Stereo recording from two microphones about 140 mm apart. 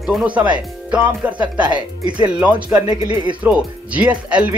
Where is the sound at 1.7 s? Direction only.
35° right (ahead or behind).